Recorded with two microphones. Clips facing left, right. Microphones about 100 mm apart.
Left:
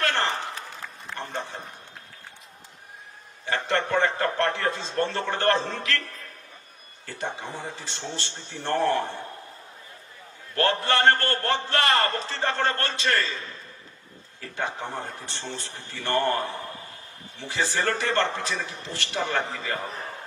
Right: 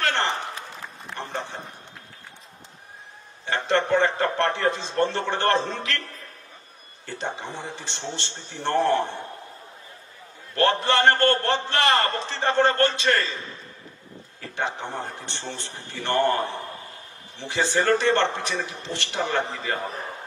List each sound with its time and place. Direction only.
0.0 s a sound: 25° right (ahead or behind)
3.4 s a man's voice: 20° right (ahead or behind)
7.1 s a man's voice: 25° right (ahead or behind)
10.5 s a man's voice: 20° right (ahead or behind)
14.5 s a man's voice: 20° right (ahead or behind)